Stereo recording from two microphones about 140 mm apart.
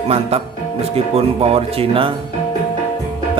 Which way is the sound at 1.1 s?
45° right (ahead or behind).